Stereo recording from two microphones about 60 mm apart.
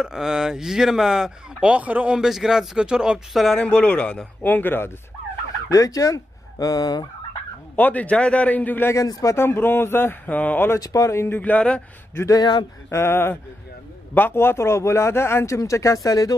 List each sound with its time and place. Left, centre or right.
0.0 s speech: centre
2.1 s speech: centre
3.5 s a man's voice: left
5.7 s speech: left
7.7 s a man's voice: left
8.9 s speech: left
9.3 s speech: left
10.2 s a man's voice: left
10.8 s speech: left
11.1 s a man's voice: left
11.3 s a man's voice: left
12.9 s a man's voice: left